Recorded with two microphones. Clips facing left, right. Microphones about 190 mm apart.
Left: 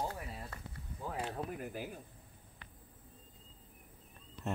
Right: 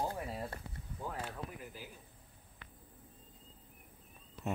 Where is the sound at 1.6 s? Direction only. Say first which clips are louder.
Left 7 dB; 55° left (ahead or behind).